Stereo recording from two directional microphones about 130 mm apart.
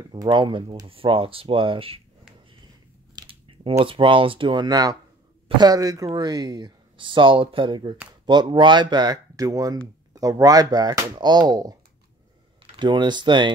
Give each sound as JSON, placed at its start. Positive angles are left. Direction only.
{"t": 0.1, "sound": "speech", "side_deg": -35}
{"t": 3.2, "sound": "mechanisms", "side_deg": -40}
{"t": 3.7, "sound": "speech", "side_deg": -45}
{"t": 12.7, "sound": "speech", "side_deg": -35}